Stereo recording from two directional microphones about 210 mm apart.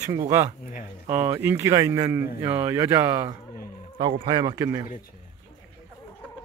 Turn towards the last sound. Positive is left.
turn(degrees=-15)  # may be behind; listen again after turning